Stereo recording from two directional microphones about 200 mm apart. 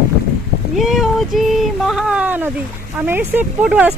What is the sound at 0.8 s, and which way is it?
Speech, centre (ahead or behind).